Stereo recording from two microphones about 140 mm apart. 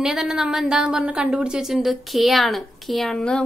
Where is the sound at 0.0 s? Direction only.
5° right (ahead or behind).